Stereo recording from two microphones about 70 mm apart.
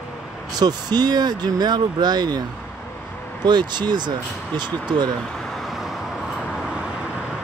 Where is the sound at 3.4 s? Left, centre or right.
Right.